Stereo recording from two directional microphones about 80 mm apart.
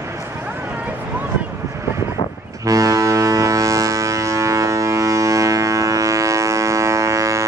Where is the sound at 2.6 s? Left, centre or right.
Right.